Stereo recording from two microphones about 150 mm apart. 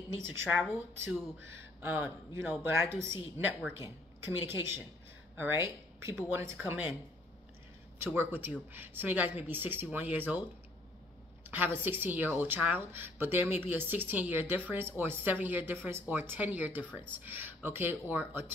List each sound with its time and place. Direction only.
0.4 s speech: 10° right (ahead or behind)
8.0 s speech: 15° right (ahead or behind)
11.4 s speech: 10° right (ahead or behind)